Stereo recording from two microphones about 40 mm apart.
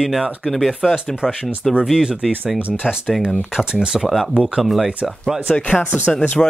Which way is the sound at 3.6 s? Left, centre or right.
Right.